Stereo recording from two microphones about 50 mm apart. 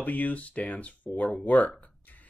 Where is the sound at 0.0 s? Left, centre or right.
Left.